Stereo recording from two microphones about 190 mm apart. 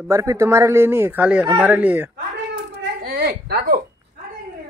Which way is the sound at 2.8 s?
55° right (ahead or behind).